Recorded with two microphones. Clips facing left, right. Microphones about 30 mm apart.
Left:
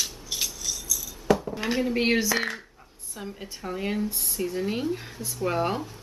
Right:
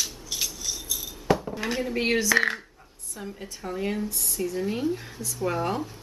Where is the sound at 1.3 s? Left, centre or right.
Centre.